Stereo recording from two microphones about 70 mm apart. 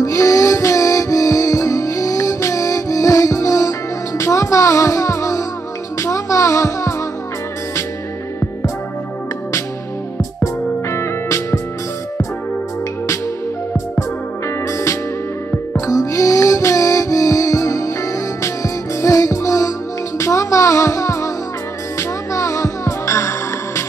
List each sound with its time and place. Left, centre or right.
0.0 s music: left
10.4 s music: left
14.7 s music: left
15.7 s music: left